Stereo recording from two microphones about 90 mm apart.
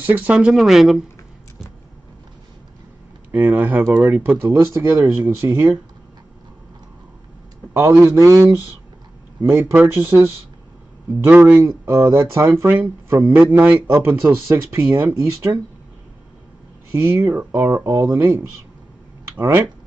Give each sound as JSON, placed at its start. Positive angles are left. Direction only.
{"t": 0.0, "sound": "speech", "side_deg": -20}
{"t": 0.5, "sound": "speech", "side_deg": 0}
{"t": 3.3, "sound": "speech", "side_deg": -20}
{"t": 7.7, "sound": "a man's voice", "side_deg": -30}
{"t": 9.5, "sound": "speech", "side_deg": -25}
{"t": 16.9, "sound": "speech", "side_deg": -30}